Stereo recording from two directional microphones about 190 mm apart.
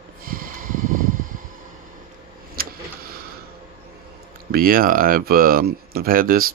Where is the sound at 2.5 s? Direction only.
50° right (ahead or behind).